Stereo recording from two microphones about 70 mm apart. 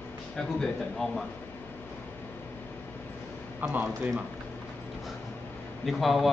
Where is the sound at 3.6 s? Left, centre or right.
Right.